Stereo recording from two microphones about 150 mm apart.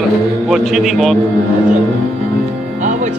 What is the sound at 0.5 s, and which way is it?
Speech, centre (ahead or behind).